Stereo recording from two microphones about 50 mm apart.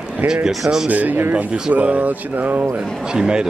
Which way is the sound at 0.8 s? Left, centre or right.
Right.